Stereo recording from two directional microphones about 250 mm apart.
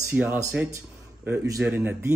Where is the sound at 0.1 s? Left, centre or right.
Centre.